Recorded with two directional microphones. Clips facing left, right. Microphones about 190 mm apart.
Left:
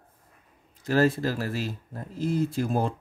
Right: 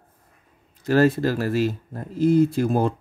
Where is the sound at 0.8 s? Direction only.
65° right (ahead or behind).